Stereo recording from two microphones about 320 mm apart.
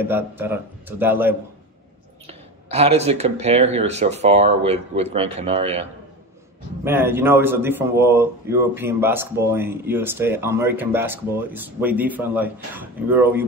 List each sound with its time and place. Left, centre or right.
0.0 s a man's voice: centre
2.2 s speech: centre
6.8 s a man's voice: centre